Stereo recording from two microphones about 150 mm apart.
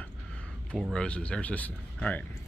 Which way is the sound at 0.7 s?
5° left (ahead or behind).